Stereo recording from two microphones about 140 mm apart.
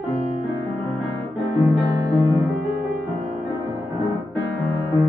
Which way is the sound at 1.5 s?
25° right (ahead or behind).